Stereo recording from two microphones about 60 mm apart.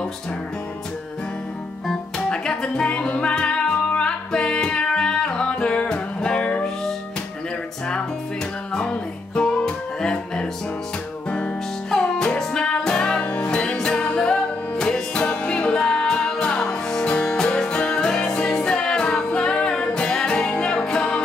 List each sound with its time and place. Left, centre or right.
2.1 s music: centre
8.7 s music: centre